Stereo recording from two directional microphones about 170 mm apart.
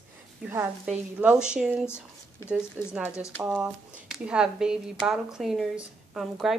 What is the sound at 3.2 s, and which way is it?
Speech, 15° left (ahead or behind).